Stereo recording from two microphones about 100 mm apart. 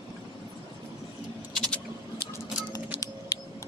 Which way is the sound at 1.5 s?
5° left (ahead or behind).